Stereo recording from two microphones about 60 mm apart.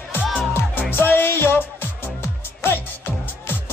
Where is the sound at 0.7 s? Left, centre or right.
Left.